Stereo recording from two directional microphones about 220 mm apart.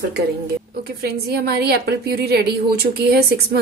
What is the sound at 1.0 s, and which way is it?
A woman's voice, 45° right (ahead or behind).